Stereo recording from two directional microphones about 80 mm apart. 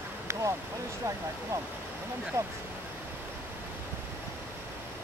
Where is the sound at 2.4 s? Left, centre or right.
Right.